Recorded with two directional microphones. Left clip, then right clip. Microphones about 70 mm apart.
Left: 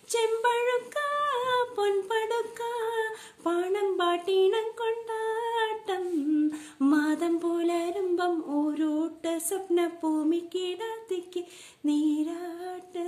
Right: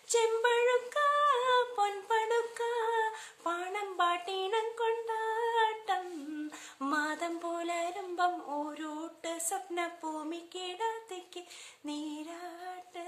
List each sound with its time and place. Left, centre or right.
0.1 s humming: left